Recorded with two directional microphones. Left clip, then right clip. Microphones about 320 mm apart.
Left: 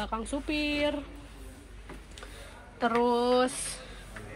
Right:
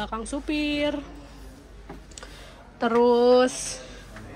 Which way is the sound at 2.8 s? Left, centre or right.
Centre.